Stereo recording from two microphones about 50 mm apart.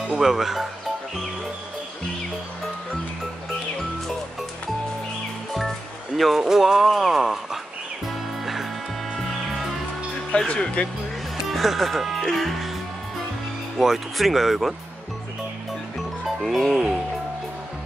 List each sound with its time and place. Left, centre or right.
0.1 s speech: centre
5.5 s music: centre
6.4 s speech: centre
9.1 s music: centre
10.3 s speech: centre
11.5 s speech: centre
13.7 s speech: centre
16.3 s speech: centre